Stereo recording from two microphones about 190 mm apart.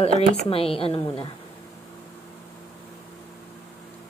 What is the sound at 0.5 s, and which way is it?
Speech, 30° left (ahead or behind).